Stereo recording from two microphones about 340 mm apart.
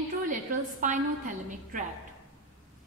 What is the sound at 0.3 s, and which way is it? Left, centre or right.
A woman's voice, right.